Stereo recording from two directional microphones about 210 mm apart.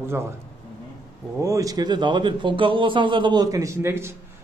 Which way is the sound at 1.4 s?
15° right (ahead or behind).